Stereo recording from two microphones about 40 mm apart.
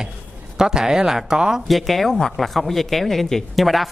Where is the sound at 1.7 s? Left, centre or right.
Centre.